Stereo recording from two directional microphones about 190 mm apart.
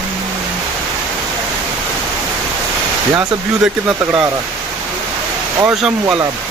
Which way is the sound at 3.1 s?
10° right (ahead or behind).